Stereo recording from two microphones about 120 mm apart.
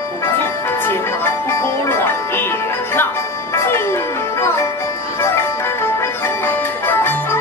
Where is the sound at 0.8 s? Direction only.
20° left (ahead or behind).